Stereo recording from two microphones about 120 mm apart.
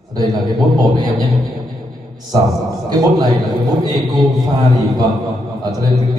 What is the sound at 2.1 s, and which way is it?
A man's voice, 35° right (ahead or behind).